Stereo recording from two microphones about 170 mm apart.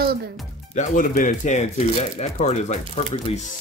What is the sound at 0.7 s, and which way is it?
Speech, 50° left (ahead or behind).